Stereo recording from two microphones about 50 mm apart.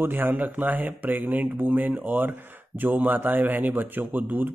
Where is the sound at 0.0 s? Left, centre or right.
Right.